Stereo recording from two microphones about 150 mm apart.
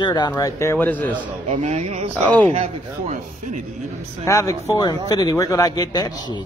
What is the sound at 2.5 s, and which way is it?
Speech, 50° right (ahead or behind).